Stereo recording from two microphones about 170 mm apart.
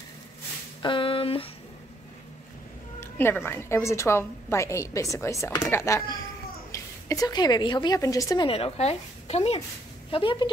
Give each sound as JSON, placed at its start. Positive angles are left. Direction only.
{"t": 0.8, "sound": "speech", "side_deg": 30}
{"t": 3.0, "sound": "a woman's voice", "side_deg": 15}
{"t": 8.5, "sound": "a woman's voice", "side_deg": 35}